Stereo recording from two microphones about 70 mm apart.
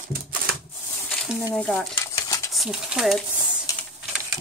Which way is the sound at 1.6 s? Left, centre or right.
Centre.